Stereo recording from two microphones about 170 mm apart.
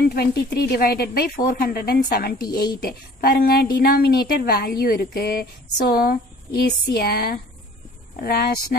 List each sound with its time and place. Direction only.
0.1 s a woman's voice: 65° left (ahead or behind)
2.4 s a woman's voice: 25° left (ahead or behind)
2.8 s a woman's voice: 60° left (ahead or behind)